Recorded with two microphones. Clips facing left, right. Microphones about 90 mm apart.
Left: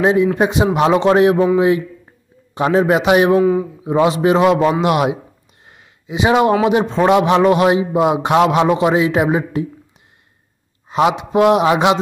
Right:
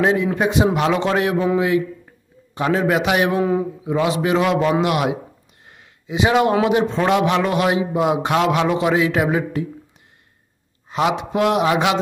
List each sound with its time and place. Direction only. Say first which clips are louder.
0.0 s a man's voice: left 4 dB; 15° left (ahead or behind)
2.5 s a man's voice: left 4 dB; 20° left (ahead or behind)
3.3 s speech: left 5 dB; centre (ahead or behind)
3.8 s a man's voice: left 8 dB; 30° left (ahead or behind)
5.7 s a sound: left 1 dB; 20° left (ahead or behind)
6.6 s a man's voice: left 3 dB; 20° left (ahead or behind)
10.9 s a man's voice: left 4 dB; 20° left (ahead or behind)